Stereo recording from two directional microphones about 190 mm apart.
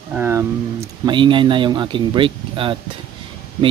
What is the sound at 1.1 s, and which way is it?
Speech, 25° right (ahead or behind).